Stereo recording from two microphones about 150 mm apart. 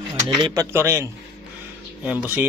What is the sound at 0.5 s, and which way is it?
A man's voice, 20° right (ahead or behind).